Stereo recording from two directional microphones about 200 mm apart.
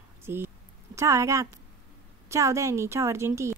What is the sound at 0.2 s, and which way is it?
Speech, 10° right (ahead or behind).